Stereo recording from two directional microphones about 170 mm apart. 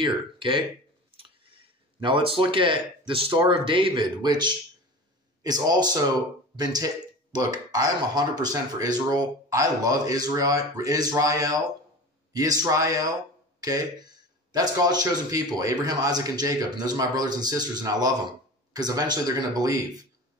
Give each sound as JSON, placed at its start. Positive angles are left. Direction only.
{"t": 0.0, "sound": "a man's voice", "side_deg": -30}